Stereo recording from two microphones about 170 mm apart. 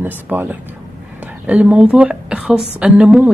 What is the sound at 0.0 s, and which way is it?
A woman's voice, 10° right (ahead or behind).